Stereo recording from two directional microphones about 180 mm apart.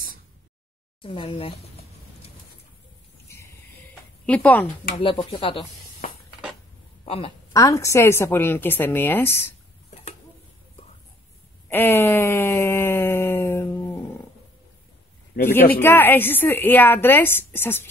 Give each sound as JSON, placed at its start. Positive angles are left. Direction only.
{"t": 1.0, "sound": "speech", "side_deg": 30}
{"t": 4.3, "sound": "a woman's voice", "side_deg": 10}
{"t": 4.9, "sound": "speech", "side_deg": 30}
{"t": 6.0, "sound": "a sound", "side_deg": 50}
{"t": 7.1, "sound": "a woman's voice", "side_deg": 30}
{"t": 7.5, "sound": "a woman's voice", "side_deg": 15}
{"t": 11.7, "sound": "a sound", "side_deg": 15}
{"t": 15.8, "sound": "a woman's voice", "side_deg": 10}